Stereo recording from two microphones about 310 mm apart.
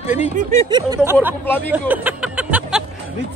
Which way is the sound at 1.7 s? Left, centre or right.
Centre.